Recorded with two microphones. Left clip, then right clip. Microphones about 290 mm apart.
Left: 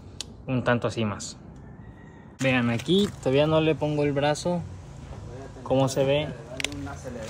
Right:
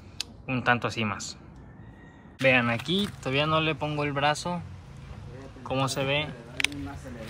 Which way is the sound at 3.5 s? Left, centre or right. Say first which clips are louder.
Left 3 dB; centre.